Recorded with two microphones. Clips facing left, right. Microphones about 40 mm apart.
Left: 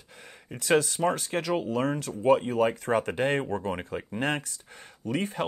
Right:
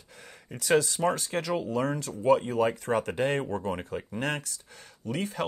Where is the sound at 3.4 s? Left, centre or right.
Left.